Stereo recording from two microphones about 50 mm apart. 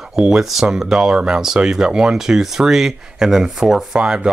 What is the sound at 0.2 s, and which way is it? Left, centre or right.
Speech, centre.